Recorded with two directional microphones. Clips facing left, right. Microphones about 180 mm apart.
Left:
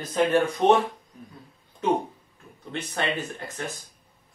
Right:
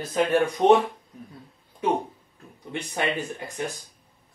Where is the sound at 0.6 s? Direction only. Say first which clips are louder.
Right 3 dB; 15° right (ahead or behind).